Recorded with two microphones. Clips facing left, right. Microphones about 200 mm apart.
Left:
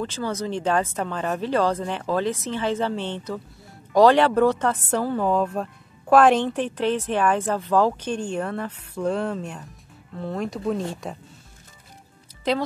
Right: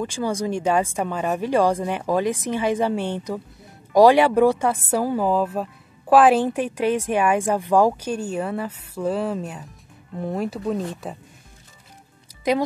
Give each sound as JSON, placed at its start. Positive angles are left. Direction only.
{"t": 0.0, "sound": "speech", "side_deg": -15}
{"t": 10.1, "sound": "speech", "side_deg": -15}
{"t": 10.5, "sound": "speech", "side_deg": 0}